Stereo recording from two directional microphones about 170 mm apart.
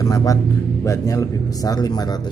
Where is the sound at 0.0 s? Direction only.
20° left (ahead or behind).